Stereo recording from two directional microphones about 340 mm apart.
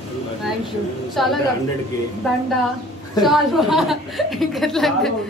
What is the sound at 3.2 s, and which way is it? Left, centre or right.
A woman's voice, centre.